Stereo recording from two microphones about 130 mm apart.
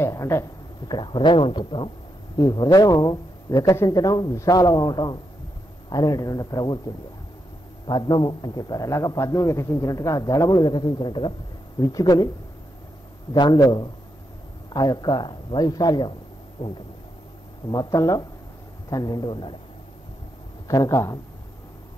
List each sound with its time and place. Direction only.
0.0 s speech: 20° left (ahead or behind)
0.8 s a man's voice: 35° left (ahead or behind)
7.8 s a man's voice: 35° left (ahead or behind)
13.3 s a man's voice: 35° left (ahead or behind)
16.6 s a sound: 45° left (ahead or behind)
17.6 s a man's voice: 30° left (ahead or behind)
20.6 s a man's voice: 25° left (ahead or behind)